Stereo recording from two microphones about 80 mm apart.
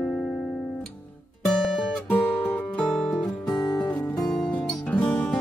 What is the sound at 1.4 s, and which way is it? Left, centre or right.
Music, centre.